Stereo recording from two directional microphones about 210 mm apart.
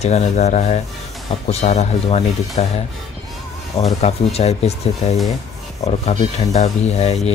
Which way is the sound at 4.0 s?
30° left (ahead or behind).